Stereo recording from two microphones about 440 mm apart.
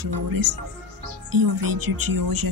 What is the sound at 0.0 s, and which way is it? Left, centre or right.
A woman's voice, right.